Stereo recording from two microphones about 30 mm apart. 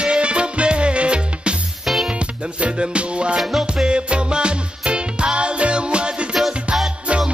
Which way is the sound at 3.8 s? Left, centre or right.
Right.